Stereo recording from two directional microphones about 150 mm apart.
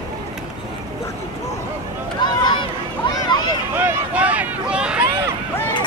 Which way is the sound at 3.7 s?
15° right (ahead or behind).